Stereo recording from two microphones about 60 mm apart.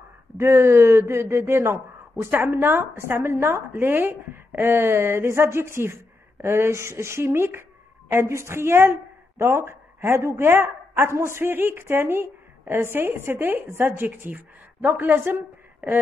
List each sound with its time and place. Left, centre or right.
0.4 s a woman's voice: right